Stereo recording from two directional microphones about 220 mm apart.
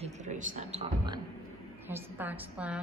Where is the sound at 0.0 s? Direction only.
35° right (ahead or behind).